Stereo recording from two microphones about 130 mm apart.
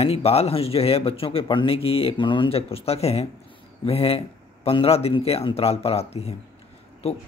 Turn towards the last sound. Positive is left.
turn(degrees=50)  # may be behind; listen again after turning